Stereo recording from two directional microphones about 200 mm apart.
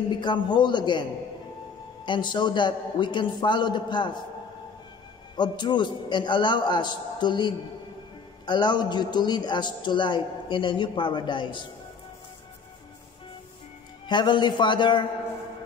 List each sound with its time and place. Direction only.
0.2 s a man's voice: 20° left (ahead or behind)
2.0 s a man's voice: 25° left (ahead or behind)
5.3 s a man's voice: 20° left (ahead or behind)
14.0 s a man's voice: 20° left (ahead or behind)